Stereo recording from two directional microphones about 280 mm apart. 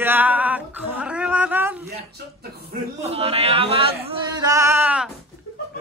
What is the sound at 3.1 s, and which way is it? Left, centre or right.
Speech, right.